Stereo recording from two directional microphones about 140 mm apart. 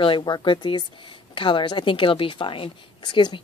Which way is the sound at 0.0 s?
35° left (ahead or behind).